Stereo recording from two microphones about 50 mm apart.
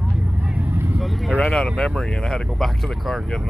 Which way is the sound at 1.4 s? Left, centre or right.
Centre.